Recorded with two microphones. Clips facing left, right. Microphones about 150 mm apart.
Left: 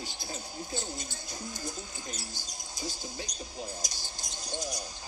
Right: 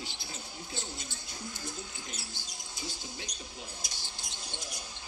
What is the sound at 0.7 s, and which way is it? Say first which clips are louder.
Speech: left 4 dB; 40° left (ahead or behind).